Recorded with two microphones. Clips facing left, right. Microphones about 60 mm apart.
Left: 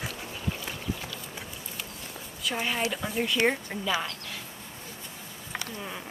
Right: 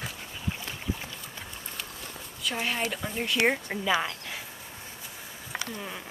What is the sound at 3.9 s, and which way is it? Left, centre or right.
Speech, centre.